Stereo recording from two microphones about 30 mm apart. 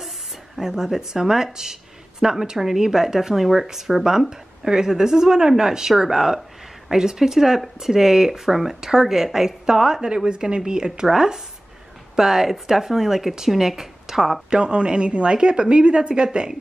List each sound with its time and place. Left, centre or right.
0.6 s speech: centre
10.0 s a woman's voice: right; by 14.3 s centre
14.5 s a woman's voice: right
16.3 s speech: right